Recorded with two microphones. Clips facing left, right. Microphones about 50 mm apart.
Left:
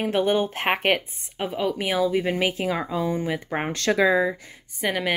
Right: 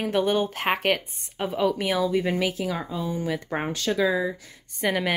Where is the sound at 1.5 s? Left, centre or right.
Centre.